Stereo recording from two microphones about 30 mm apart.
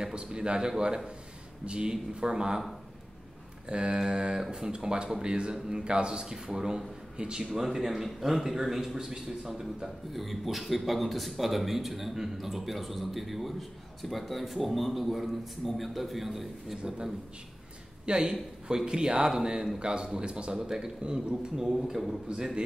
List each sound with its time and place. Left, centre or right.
0.0 s a man's voice: right
3.6 s a man's voice: right
7.2 s a man's voice: right
7.4 s a man's voice: centre
10.1 s a man's voice: centre
16.7 s a man's voice: right
20.5 s a man's voice: centre
21.0 s a man's voice: right